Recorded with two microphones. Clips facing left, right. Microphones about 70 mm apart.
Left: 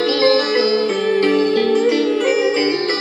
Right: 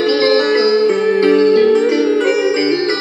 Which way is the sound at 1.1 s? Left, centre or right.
Right.